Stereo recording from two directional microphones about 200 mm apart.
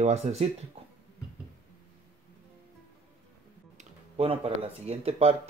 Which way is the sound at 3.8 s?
30° right (ahead or behind).